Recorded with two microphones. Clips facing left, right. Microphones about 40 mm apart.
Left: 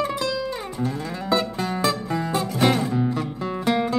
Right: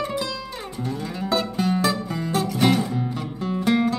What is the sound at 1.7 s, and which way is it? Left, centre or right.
Music, centre.